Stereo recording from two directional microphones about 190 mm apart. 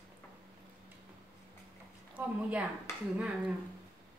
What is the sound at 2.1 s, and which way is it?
A woman's voice, 5° right (ahead or behind).